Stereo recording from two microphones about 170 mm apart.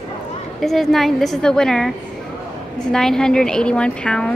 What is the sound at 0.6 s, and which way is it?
A woman's voice, centre (ahead or behind).